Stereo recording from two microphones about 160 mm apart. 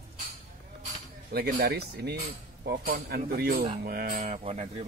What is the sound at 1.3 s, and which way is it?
Speech, 80° right.